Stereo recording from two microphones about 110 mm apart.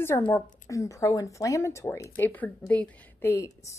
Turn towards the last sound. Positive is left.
turn(degrees=25)  # may be behind; listen again after turning